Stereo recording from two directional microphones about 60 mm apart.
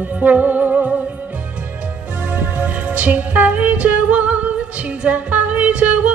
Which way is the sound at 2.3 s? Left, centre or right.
Right.